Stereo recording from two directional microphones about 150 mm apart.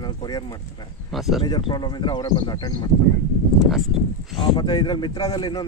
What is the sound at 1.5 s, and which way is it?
A man's voice, 30° left (ahead or behind).